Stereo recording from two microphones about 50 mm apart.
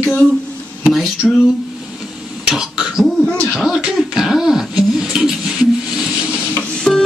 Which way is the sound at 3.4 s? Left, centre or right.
Centre.